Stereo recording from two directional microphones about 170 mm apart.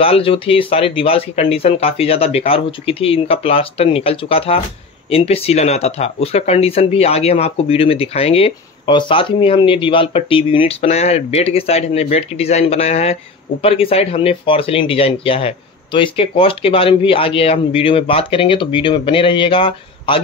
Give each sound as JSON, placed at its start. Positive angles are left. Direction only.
{"t": 0.0, "sound": "speech", "side_deg": 35}